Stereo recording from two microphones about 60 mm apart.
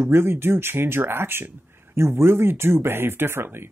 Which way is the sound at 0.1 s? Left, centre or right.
Right.